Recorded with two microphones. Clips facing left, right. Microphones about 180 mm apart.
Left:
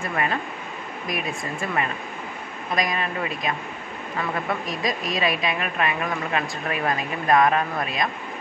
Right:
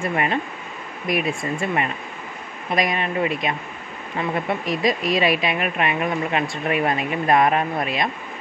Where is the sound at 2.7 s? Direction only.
25° right (ahead or behind).